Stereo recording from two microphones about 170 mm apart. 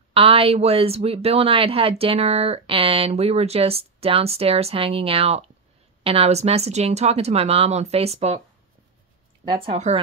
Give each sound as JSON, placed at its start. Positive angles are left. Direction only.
{"t": 0.1, "sound": "speech", "side_deg": -35}
{"t": 9.4, "sound": "speech", "side_deg": -30}